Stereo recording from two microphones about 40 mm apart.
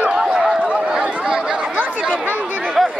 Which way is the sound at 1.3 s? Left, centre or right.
Centre.